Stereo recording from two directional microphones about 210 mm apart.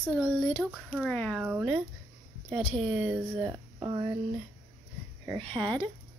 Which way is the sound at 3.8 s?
20° right (ahead or behind).